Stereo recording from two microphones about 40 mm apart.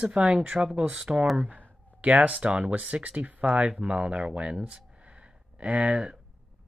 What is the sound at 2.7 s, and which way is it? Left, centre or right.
Speech, right.